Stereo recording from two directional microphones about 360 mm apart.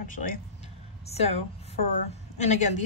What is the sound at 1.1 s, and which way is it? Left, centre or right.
Speech, centre.